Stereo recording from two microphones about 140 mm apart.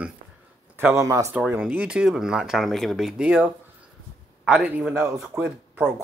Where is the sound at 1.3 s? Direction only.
10° right (ahead or behind).